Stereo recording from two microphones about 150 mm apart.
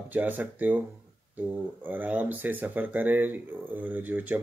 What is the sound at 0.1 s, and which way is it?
Speech, 10° right (ahead or behind).